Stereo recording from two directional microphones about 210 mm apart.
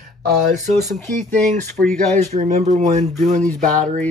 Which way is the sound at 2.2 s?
30° right (ahead or behind).